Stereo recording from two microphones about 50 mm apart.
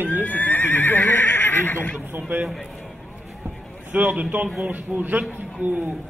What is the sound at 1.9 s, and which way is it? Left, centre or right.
Speech, right.